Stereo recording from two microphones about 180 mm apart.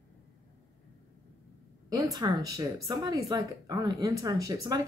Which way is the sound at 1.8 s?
20° right (ahead or behind).